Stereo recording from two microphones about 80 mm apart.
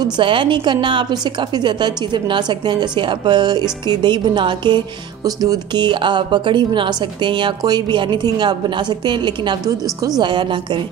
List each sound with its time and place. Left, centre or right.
0.0 s speech: right
5.2 s speech: right